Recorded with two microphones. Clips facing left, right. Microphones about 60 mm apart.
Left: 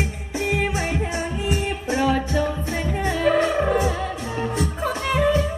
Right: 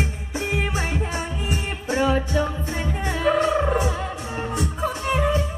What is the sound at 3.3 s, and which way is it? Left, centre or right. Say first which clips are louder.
Music: left 1 dB; left.